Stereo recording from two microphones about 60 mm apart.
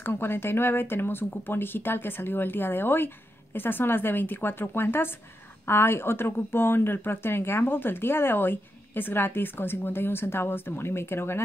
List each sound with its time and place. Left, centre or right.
0.0 s speech: left